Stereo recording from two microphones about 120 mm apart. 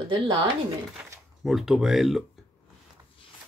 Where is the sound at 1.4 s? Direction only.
5° right (ahead or behind).